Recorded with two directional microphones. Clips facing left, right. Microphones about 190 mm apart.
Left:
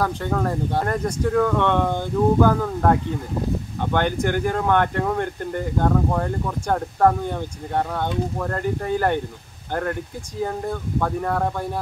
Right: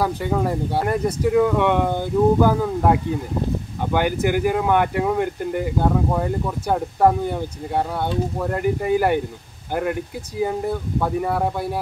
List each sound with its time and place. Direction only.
0.0 s speech: 10° right (ahead or behind)
10.4 s speech: 10° right (ahead or behind)